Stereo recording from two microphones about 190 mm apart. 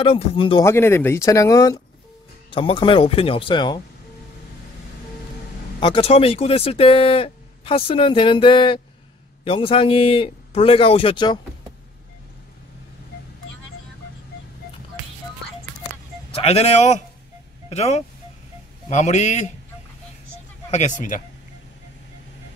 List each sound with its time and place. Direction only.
0.0 s speech: 30° left (ahead or behind)
0.7 s speech: 15° left (ahead or behind)
5.8 s speech: 25° left (ahead or behind)
16.3 s a man's voice: 30° left (ahead or behind)
21.1 s a man's voice: 45° left (ahead or behind)